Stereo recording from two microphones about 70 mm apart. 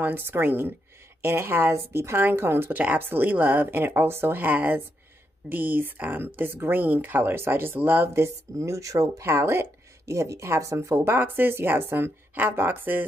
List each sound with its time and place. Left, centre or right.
0.0 s speech: right
9.2 s speech: right
10.0 s speech: right
11.1 s speech: right